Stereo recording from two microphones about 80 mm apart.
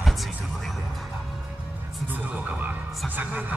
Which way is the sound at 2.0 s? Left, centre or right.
Right.